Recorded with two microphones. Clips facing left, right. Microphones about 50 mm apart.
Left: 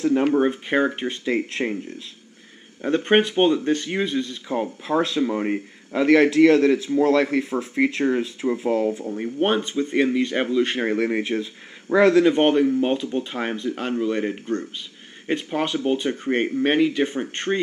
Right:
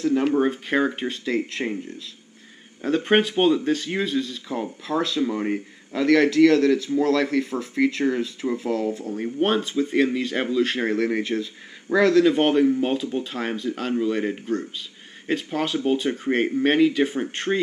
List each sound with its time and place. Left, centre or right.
0.0 s speech: centre
2.8 s speech: centre
4.8 s speech: left; by 9.9 s centre
9.9 s speech: centre
12.3 s speech: centre